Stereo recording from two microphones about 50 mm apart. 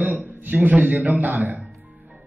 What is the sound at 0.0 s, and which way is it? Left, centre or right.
A man's voice, right.